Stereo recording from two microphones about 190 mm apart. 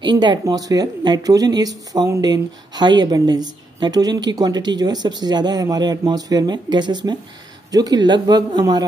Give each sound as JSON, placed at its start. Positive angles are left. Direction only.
{"t": 0.0, "sound": "speech", "side_deg": -25}